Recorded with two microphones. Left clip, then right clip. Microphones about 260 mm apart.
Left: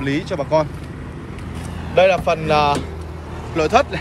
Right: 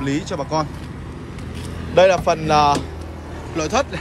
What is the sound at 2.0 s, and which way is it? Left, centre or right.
Speech, centre.